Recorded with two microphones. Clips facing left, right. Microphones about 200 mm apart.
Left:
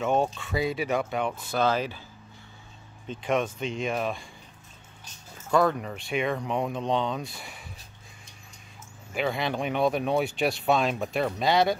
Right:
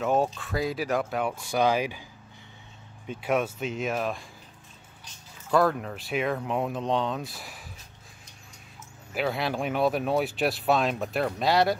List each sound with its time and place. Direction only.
0.0 s speech: centre (ahead or behind)
1.3 s speech: 10° right (ahead or behind)
3.1 s speech: 5° right (ahead or behind)
5.5 s speech: centre (ahead or behind)
9.1 s speech: 5° right (ahead or behind)